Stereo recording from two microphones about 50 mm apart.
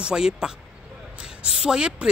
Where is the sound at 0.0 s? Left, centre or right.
Centre.